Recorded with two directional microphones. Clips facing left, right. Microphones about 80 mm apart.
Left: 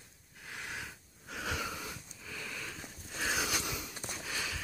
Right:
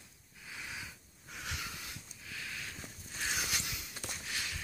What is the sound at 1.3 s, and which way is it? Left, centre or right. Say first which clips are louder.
Wheeze: left 6 dB; left.